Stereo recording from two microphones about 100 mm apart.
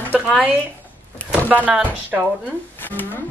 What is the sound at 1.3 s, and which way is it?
Speech, 15° right (ahead or behind).